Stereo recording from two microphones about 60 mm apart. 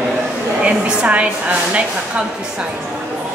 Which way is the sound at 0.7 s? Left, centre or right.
Right.